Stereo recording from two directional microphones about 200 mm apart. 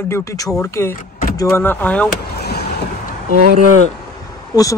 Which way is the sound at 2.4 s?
55° left (ahead or behind).